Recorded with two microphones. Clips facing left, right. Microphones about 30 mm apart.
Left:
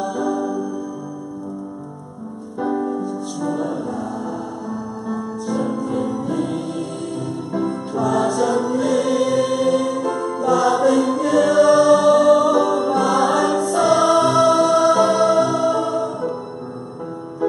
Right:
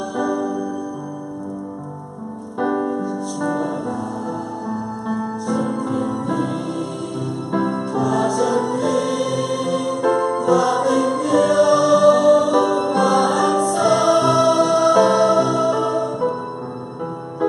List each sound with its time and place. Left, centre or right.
0.0 s music: centre
2.8 s music: centre
5.5 s music: centre
8.0 s music: centre
17.4 s music: right